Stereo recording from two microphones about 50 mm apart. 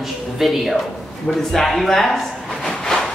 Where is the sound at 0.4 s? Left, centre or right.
Centre.